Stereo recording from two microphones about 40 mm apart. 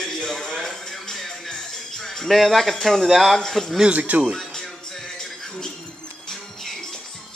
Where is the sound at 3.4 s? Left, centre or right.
Centre.